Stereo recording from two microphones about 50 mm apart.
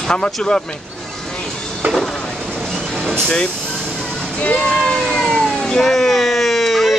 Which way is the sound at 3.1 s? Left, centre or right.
Centre.